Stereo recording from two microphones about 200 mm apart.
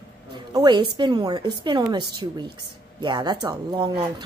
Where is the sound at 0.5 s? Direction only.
20° right (ahead or behind).